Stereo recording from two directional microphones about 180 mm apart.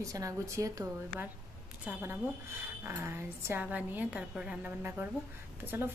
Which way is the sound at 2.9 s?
15° right (ahead or behind).